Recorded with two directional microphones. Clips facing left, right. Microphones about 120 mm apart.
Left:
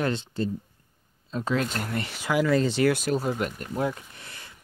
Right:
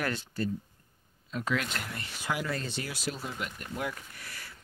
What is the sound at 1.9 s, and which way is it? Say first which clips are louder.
Speech: left 10 dB; 85° left.